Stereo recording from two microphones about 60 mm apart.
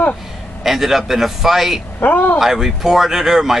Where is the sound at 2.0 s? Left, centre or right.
Left.